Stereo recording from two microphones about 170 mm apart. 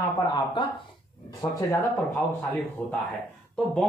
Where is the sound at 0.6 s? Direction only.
30° left (ahead or behind).